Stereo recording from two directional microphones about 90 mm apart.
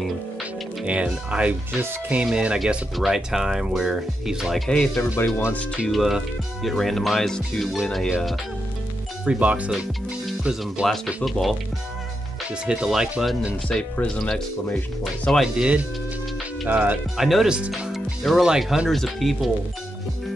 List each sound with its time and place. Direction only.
0.8 s speech: 10° right (ahead or behind)
4.6 s speech: 10° left (ahead or behind)
5.9 s speech: centre (ahead or behind)
9.2 s speech: 10° right (ahead or behind)
12.6 s speech: 10° right (ahead or behind)
13.7 s speech: 15° left (ahead or behind)
15.4 s speech: 10° right (ahead or behind)
17.2 s speech: 5° right (ahead or behind)